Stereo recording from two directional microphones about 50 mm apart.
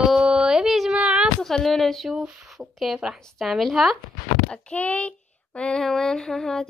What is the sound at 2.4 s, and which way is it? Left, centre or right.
Child singing, centre.